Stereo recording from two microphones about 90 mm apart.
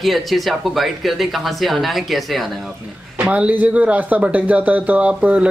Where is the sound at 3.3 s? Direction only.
15° right (ahead or behind).